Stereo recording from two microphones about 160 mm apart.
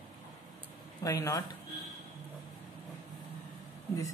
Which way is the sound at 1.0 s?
20° left (ahead or behind).